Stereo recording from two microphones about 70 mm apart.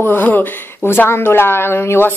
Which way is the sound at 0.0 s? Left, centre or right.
Left.